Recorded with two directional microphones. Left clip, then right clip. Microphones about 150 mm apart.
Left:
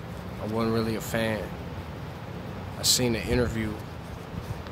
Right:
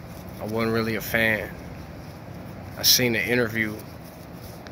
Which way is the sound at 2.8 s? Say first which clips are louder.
Right 5 dB; 10° right (ahead or behind).